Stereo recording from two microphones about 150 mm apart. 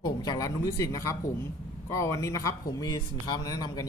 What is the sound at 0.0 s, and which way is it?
Speech, 25° left (ahead or behind).